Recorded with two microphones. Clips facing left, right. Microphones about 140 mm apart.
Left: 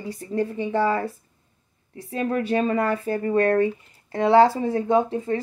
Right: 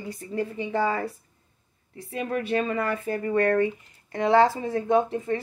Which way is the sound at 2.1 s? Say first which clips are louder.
Left 3 dB; 35° left (ahead or behind).